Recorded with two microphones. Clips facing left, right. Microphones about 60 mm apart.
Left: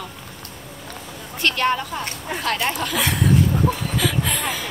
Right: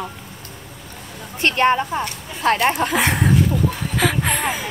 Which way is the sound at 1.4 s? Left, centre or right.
Right.